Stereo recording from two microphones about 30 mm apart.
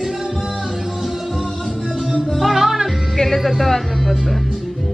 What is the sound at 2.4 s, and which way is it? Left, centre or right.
Music, centre.